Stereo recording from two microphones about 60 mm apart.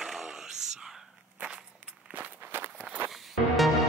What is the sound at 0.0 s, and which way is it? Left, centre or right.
Whispering, centre.